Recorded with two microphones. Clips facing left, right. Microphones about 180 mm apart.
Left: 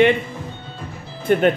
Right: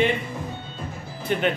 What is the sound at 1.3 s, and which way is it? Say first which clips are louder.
Speech: left 8 dB; 50° left (ahead or behind).